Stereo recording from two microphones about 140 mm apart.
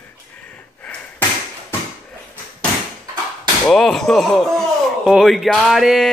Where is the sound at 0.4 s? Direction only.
10° left (ahead or behind).